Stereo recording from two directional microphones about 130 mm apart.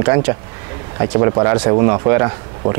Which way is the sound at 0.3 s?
25° right (ahead or behind).